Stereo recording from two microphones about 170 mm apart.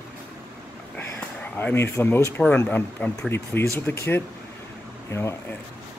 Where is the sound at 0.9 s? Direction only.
10° left (ahead or behind).